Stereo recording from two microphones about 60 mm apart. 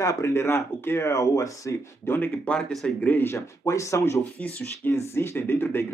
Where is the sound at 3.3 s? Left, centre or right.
Left.